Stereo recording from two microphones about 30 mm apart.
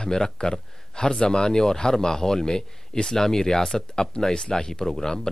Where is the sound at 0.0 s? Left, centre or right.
Left.